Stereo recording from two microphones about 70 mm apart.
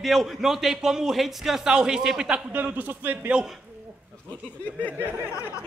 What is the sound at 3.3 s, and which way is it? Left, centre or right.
Speech, centre.